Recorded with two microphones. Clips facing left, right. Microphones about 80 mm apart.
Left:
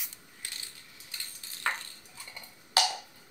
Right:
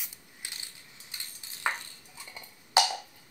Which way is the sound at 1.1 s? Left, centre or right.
Centre.